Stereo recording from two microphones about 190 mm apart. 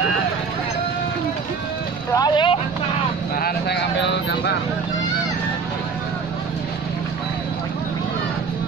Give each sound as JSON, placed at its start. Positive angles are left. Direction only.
{"t": 2.1, "sound": "vehicle", "side_deg": 25}
{"t": 3.3, "sound": "speech", "side_deg": 55}